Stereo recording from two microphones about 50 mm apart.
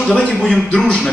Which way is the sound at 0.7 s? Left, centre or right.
Centre.